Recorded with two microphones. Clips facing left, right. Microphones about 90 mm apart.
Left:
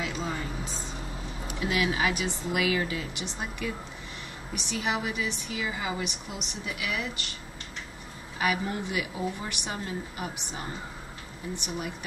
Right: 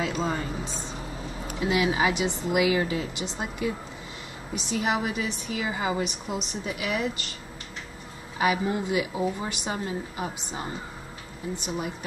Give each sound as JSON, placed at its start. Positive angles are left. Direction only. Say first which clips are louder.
{"t": 0.0, "sound": "a sound", "louder": "right 5 dB", "side_deg": -25}
{"t": 1.6, "sound": "a woman's voice", "louder": "right 3 dB", "side_deg": -25}
{"t": 8.4, "sound": "a woman's voice", "louder": "right 4 dB", "side_deg": -25}